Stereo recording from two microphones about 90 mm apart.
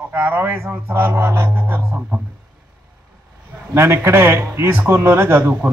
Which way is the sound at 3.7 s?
30° right (ahead or behind).